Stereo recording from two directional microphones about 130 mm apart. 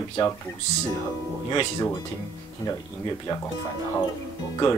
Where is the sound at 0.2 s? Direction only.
40° left (ahead or behind).